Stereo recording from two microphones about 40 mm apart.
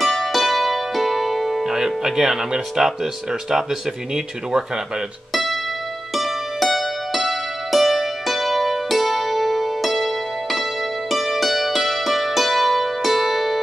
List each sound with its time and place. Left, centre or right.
0.0 s music: centre
4.1 s speech: centre
5.3 s music: centre